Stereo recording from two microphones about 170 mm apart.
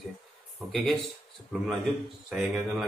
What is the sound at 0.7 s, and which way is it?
Speech, centre (ahead or behind).